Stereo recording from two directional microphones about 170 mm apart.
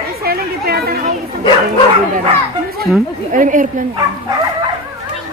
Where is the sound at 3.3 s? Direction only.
50° right (ahead or behind).